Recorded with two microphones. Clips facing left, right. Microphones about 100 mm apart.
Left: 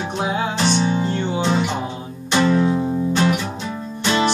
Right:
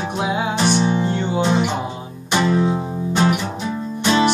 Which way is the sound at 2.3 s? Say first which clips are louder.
Left 1 dB; 15° right (ahead or behind).